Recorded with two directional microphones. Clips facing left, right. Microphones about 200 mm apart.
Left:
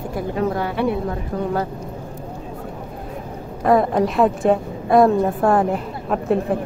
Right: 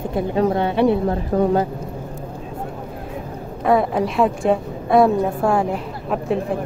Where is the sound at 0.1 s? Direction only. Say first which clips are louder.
Right 3 dB; 25° right (ahead or behind).